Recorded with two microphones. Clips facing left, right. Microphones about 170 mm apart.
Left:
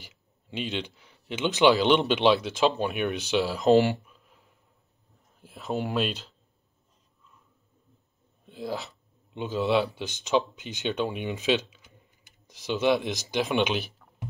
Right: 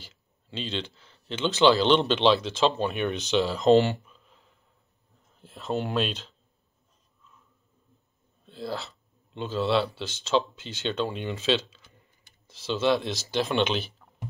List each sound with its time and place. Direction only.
0.0 s speech: 15° left (ahead or behind)
8.5 s speech: 15° left (ahead or behind)